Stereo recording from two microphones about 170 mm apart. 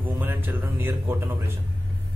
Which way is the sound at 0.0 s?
10° right (ahead or behind).